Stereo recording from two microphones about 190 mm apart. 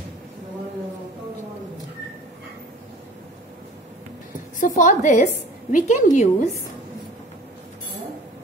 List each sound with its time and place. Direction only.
4.6 s a woman's voice: 45° left (ahead or behind)